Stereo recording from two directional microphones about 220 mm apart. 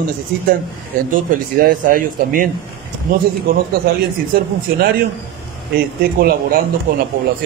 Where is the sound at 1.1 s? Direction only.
40° right (ahead or behind).